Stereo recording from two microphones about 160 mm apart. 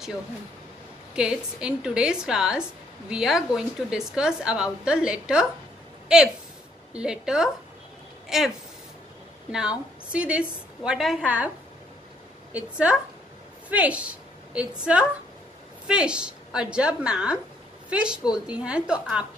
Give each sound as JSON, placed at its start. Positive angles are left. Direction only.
{"t": 1.1, "sound": "a woman's voice", "side_deg": -5}
{"t": 12.5, "sound": "a woman's voice", "side_deg": -5}
{"t": 15.9, "sound": "a woman's voice", "side_deg": -5}